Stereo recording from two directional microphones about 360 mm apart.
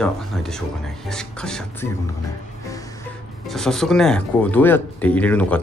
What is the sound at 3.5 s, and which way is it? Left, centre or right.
Speech, centre.